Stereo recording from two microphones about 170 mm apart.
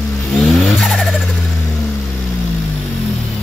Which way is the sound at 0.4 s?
Centre (ahead or behind).